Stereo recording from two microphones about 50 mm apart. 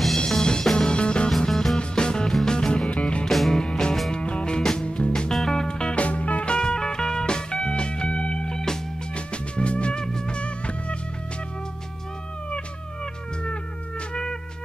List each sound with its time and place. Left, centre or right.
0.3 s music: centre
1.5 s music: centre
1.8 s music: centre
3.3 s music: centre
3.6 s music: centre
5.3 s music: centre; by 11.0 s left
12.4 s music: left